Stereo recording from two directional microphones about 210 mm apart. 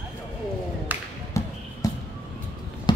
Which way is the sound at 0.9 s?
10° right (ahead or behind).